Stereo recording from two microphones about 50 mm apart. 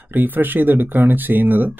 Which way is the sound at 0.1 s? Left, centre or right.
Right.